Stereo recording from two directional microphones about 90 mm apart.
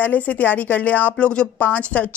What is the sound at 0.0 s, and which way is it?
Speech, 20° left (ahead or behind).